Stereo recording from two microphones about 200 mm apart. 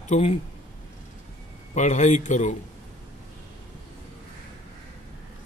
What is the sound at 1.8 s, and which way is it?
Speech, 35° left (ahead or behind).